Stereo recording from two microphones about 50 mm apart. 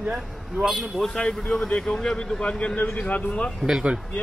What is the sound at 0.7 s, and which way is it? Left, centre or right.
Speech, centre.